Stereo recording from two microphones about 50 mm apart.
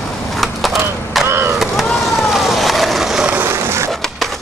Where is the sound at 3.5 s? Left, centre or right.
Right.